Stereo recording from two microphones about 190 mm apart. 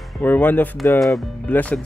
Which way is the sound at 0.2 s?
10° left (ahead or behind).